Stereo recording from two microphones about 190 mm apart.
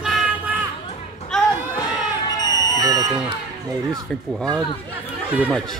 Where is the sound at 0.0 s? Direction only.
5° right (ahead or behind).